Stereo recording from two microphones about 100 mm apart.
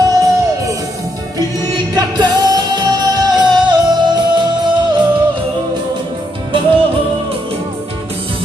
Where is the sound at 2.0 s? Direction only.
45° right (ahead or behind).